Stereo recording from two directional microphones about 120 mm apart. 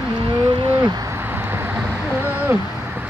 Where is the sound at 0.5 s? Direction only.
45° right (ahead or behind).